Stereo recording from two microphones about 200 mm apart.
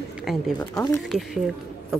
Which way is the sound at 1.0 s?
Centre (ahead or behind).